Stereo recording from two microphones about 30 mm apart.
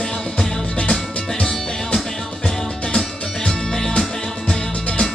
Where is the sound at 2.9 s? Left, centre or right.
Left.